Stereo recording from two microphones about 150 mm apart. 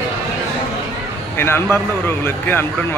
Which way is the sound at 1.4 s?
15° left (ahead or behind).